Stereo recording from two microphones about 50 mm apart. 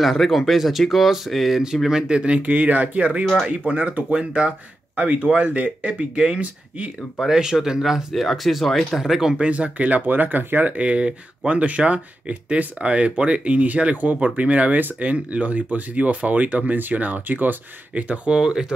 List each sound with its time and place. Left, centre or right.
0.0 s speech: centre
1.9 s speech: centre; by 4.0 s right
4.1 s speech: right
7.2 s speech: centre
9.4 s speech: right
10.8 s speech: right
18.3 s speech: centre